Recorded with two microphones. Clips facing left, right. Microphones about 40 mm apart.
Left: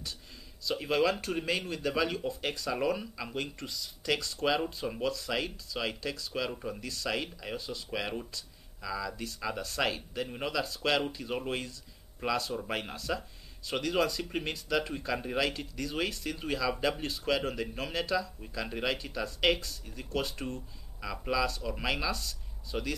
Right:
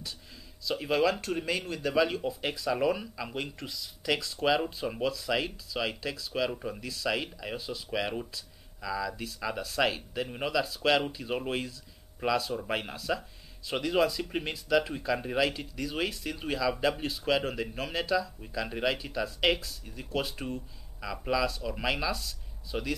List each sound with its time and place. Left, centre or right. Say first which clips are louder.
0.7 s speech: right 1 dB; centre